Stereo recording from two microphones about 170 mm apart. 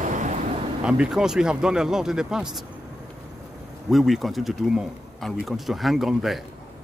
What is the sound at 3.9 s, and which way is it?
Speech, centre (ahead or behind).